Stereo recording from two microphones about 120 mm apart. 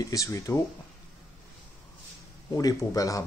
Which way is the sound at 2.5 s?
30° left (ahead or behind).